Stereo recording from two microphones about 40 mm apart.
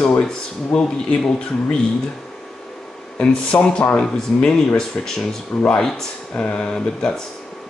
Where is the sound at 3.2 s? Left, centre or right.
Left.